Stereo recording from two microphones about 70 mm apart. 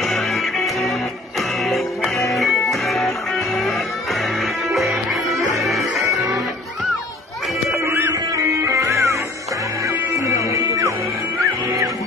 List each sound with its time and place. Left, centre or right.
0.0 s music: centre
7.8 s music: right